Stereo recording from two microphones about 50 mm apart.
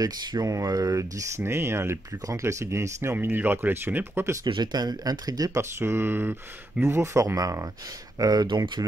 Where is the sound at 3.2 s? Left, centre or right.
Right.